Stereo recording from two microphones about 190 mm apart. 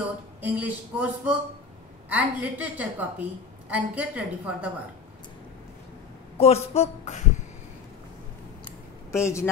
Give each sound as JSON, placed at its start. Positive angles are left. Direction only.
{"t": 0.4, "sound": "a woman's voice", "side_deg": -10}
{"t": 6.3, "sound": "a woman's voice", "side_deg": 35}
{"t": 9.1, "sound": "speech", "side_deg": 15}